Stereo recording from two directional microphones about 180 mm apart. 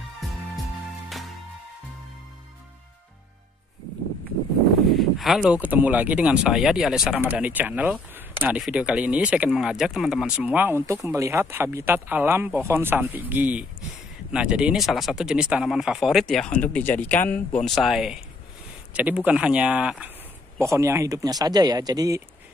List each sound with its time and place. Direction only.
4.8 s speech: centre (ahead or behind)
20.5 s speech: 15° right (ahead or behind)